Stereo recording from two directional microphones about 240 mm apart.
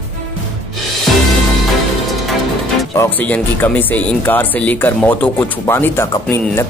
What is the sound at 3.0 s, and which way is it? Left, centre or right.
Speech, centre.